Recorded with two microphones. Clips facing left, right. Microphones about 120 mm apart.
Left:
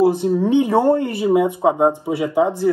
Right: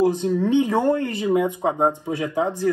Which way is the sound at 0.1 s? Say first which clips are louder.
Left 3 dB; 15° left (ahead or behind).